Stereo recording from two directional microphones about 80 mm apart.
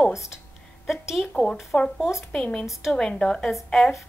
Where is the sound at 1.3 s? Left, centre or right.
Centre.